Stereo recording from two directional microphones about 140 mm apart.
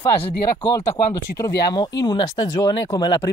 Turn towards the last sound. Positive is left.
turn(degrees=30)  # may be behind; listen again after turning